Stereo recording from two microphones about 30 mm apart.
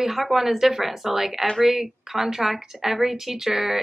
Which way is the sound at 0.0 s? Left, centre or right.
Centre.